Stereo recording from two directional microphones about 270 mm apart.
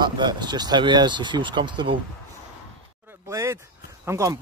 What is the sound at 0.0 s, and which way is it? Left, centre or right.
Speech, centre.